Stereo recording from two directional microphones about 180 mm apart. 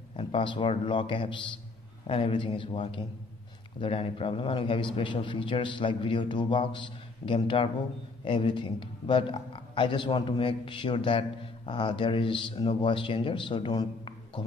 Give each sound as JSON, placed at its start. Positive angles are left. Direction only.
{"t": 0.1, "sound": "speech", "side_deg": 30}